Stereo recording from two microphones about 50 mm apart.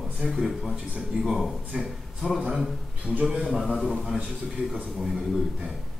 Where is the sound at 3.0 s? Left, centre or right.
Right.